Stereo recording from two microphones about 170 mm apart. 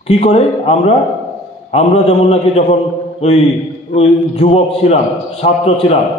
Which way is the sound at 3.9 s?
35° left (ahead or behind).